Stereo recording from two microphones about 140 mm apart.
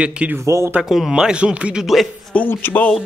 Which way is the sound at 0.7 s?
5° right (ahead or behind).